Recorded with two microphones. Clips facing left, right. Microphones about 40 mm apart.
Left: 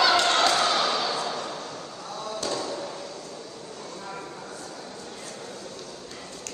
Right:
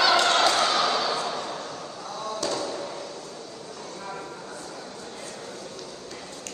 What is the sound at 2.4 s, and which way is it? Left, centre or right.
Basketball bounce, right.